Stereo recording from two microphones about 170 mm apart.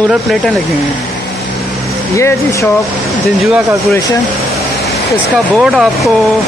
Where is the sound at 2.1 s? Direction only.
20° left (ahead or behind).